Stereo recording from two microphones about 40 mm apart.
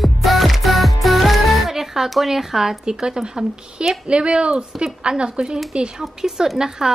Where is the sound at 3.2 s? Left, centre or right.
Right.